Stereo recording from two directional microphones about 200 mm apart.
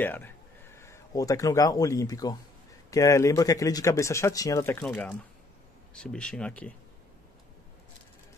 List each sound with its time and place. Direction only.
0.0 s speech: 10° left (ahead or behind)